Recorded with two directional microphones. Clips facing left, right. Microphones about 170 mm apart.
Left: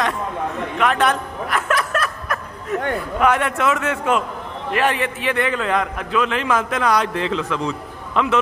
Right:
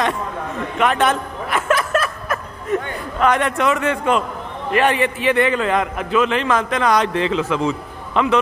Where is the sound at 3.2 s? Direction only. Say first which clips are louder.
Right 2 dB; 5° left (ahead or behind).